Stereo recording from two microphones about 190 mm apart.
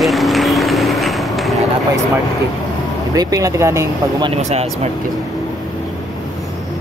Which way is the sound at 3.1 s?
15° right (ahead or behind).